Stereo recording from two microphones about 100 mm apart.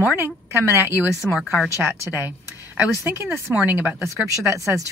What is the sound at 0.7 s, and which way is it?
Speech, 25° right (ahead or behind).